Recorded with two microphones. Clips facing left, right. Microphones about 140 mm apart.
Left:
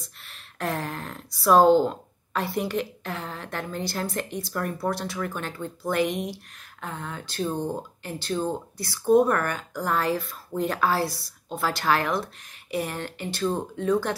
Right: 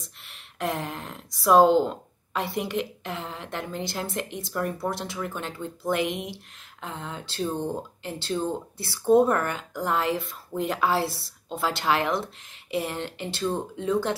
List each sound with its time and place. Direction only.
0.2 s speech: 20° right (ahead or behind)